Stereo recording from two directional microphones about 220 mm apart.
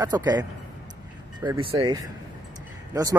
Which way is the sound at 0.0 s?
20° right (ahead or behind).